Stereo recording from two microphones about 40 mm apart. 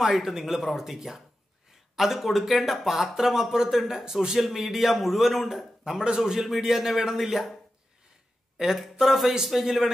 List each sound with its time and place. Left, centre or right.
0.0 s a man's voice: centre
6.0 s speech: centre
8.5 s a man's voice: centre